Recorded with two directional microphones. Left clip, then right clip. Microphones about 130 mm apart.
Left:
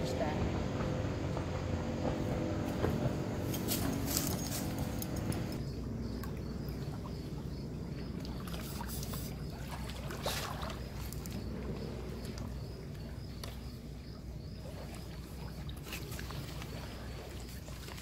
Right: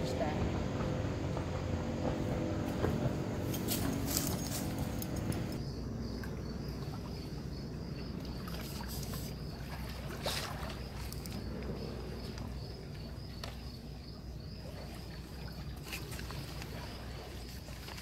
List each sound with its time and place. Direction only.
0.0 s vehicle: centre (ahead or behind)
10.2 s boat: 25° right (ahead or behind)